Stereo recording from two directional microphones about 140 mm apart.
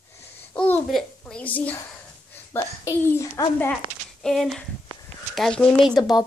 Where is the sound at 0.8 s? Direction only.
5° left (ahead or behind).